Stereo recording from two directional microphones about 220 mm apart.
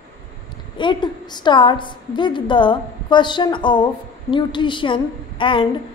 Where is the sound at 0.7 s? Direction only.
20° left (ahead or behind).